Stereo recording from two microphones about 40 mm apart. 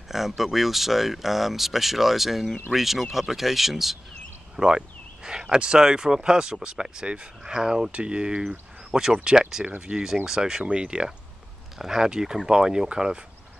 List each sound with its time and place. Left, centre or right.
0.4 s speech: centre
4.6 s speech: centre
10.6 s speech: right